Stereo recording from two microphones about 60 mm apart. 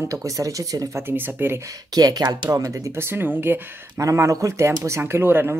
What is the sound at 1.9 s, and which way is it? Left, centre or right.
Speech, right.